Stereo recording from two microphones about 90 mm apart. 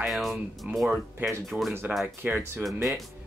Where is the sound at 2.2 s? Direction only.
20° right (ahead or behind).